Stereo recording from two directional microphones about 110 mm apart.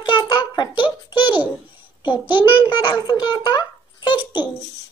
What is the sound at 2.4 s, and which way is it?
Speech, 15° right (ahead or behind).